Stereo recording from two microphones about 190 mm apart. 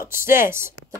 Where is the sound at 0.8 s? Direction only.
90° left.